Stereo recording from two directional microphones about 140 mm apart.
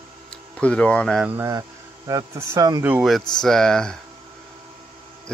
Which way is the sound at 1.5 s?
25° right (ahead or behind).